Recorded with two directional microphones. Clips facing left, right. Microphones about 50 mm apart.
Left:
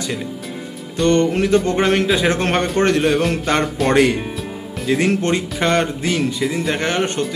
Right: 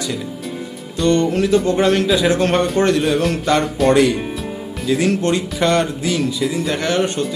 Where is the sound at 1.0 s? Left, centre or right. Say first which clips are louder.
Even; left.